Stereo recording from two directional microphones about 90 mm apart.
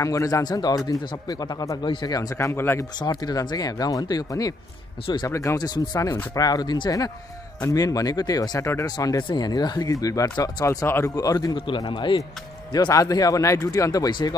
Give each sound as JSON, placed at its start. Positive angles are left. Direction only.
{"t": 0.0, "sound": "speech", "side_deg": 40}
{"t": 1.9, "sound": "a man's voice", "side_deg": 60}
{"t": 2.3, "sound": "speech", "side_deg": 25}
{"t": 3.0, "sound": "speech", "side_deg": 50}
{"t": 5.0, "sound": "a man's voice", "side_deg": 55}
{"t": 5.3, "sound": "speech", "side_deg": 35}
{"t": 5.6, "sound": "speech", "side_deg": 45}
{"t": 8.8, "sound": "speech", "side_deg": 45}
{"t": 11.5, "sound": "a man's voice", "side_deg": 70}
{"t": 12.7, "sound": "speech", "side_deg": 40}